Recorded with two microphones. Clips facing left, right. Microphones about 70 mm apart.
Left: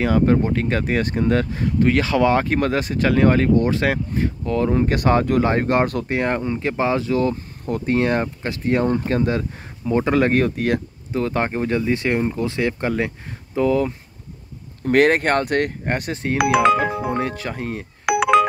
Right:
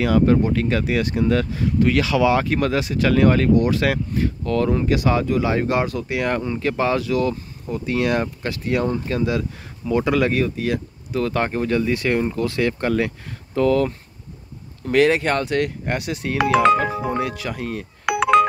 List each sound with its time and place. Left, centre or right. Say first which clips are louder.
0.0 s speech: right 1 dB; left
4.8 s speech: left 1 dB; left
6.1 s speech: even; left
7.6 s speech: left 3 dB; left
7.9 s speech: left 1 dB; left
11.1 s speech: even; left
14.9 s speech: left 1 dB; left
16.3 s speech: even; centre
17.2 s speech: even; left
18.0 s a sound: even; centre